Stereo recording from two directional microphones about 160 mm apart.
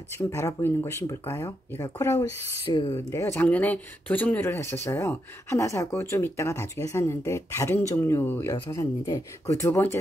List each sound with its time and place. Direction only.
0.3 s speech: 15° left (ahead or behind)